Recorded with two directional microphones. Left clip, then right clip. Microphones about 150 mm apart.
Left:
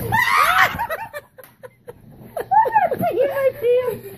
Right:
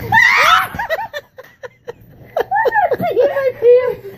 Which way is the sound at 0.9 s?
10° right (ahead or behind).